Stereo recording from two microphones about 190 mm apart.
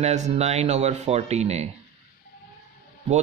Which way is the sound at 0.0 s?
35° right (ahead or behind).